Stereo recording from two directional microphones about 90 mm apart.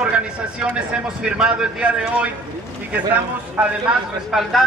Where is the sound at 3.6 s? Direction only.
15° right (ahead or behind).